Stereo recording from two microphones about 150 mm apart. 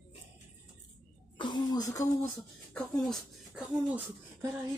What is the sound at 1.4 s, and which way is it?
Speech, 30° left (ahead or behind).